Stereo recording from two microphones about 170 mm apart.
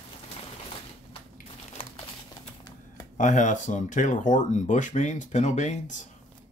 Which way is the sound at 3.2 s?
45° left (ahead or behind).